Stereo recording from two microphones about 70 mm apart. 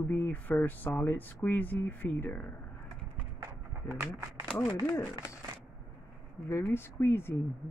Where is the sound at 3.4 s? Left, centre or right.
Right.